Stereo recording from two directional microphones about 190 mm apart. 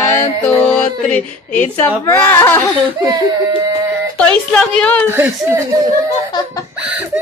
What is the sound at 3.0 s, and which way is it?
Speech, 20° right (ahead or behind).